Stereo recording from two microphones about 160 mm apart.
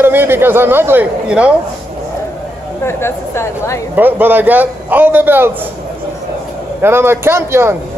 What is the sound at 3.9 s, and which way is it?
A man's voice, 10° right (ahead or behind).